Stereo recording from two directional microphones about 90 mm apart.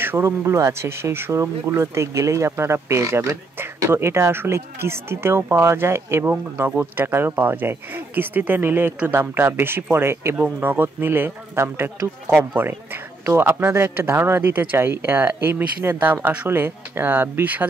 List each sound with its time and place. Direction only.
0.0 s speech: 25° right (ahead or behind)